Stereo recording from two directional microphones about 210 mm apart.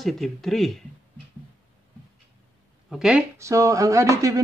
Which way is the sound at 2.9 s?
5° right (ahead or behind).